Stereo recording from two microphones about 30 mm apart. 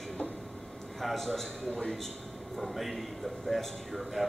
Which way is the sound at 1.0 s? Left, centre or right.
Centre.